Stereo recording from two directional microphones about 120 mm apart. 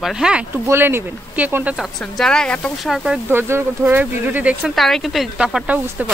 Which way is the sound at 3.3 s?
20° right (ahead or behind).